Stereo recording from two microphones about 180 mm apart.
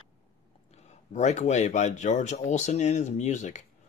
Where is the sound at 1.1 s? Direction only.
40° left (ahead or behind).